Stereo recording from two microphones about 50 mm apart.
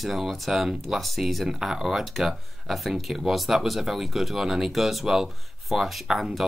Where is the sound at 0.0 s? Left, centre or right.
Centre.